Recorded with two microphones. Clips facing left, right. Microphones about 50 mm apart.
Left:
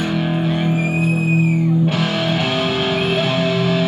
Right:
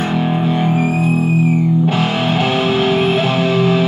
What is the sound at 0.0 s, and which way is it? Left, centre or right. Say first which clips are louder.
Music: right 3 dB; right.